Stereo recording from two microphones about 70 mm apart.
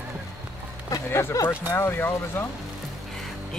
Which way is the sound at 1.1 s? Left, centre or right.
Left.